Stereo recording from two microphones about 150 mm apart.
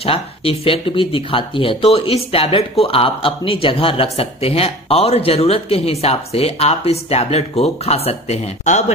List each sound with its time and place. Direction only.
0.0 s speech: 40° left (ahead or behind)